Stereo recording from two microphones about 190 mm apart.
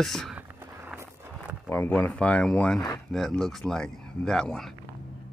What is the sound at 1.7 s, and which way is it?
Speech, 10° left (ahead or behind).